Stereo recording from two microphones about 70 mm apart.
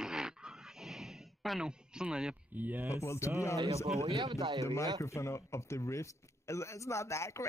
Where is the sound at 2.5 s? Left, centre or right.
Right.